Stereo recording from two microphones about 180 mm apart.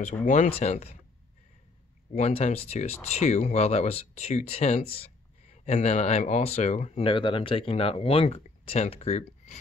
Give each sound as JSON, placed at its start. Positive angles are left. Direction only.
{"t": 0.0, "sound": "speech", "side_deg": 40}
{"t": 2.1, "sound": "speech", "side_deg": 35}